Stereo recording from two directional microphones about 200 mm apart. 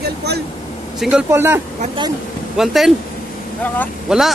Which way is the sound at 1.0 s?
5° right (ahead or behind).